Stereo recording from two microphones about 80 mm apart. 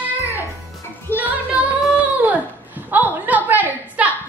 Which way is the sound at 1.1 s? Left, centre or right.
Right.